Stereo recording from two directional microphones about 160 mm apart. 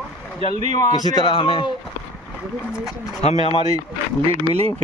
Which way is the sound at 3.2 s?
40° left (ahead or behind).